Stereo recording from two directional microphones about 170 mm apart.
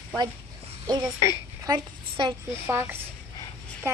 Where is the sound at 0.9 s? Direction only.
25° right (ahead or behind).